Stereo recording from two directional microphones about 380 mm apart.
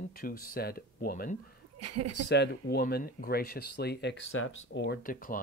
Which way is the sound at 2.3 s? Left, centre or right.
Left.